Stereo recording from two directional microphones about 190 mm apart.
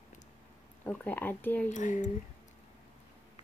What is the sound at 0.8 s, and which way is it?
Speech, 10° left (ahead or behind).